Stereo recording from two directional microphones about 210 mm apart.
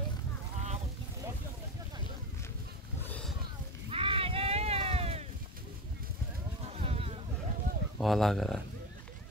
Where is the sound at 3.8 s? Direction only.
25° right (ahead or behind).